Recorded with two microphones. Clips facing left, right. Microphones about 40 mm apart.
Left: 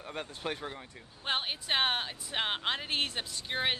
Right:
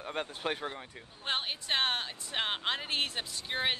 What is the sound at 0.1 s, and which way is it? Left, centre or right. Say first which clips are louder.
Speech: right 2 dB; right.